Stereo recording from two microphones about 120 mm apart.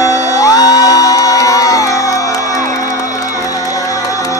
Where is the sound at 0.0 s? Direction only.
30° left (ahead or behind).